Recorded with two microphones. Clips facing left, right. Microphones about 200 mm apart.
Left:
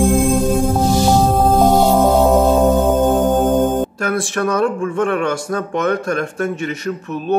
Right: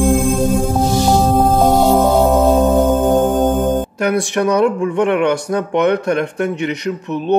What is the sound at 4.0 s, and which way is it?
Speech, 15° right (ahead or behind).